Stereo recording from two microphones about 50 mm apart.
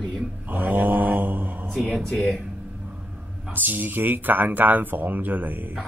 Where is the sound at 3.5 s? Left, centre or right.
Right.